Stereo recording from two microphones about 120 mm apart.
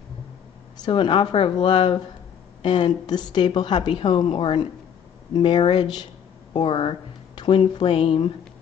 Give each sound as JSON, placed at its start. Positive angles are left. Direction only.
{"t": 0.7, "sound": "a woman's voice", "side_deg": 40}